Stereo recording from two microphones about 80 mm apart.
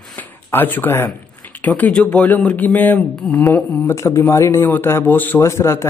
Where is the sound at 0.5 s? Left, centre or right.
Left.